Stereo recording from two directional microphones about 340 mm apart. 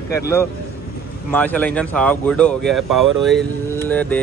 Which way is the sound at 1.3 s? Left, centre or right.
Centre.